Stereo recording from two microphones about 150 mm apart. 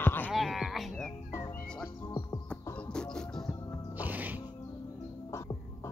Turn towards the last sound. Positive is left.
turn(degrees=20)  # may be behind; listen again after turning